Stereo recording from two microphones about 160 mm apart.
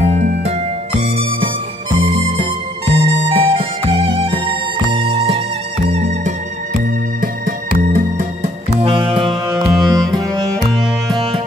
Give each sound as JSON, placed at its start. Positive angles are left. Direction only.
{"t": 0.0, "sound": "music", "side_deg": -45}
{"t": 7.2, "sound": "music", "side_deg": -55}
{"t": 8.7, "sound": "music", "side_deg": -35}